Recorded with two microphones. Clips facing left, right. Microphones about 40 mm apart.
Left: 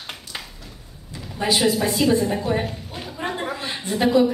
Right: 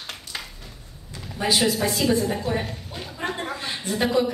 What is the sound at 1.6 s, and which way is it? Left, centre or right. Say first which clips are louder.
A woman's voice: left 3 dB; centre.